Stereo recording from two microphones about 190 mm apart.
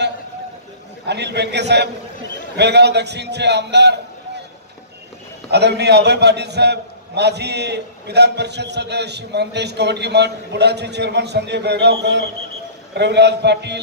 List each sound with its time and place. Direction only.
1.0 s a man's voice: 65° right (ahead or behind)
5.5 s a man's voice: 60° right (ahead or behind)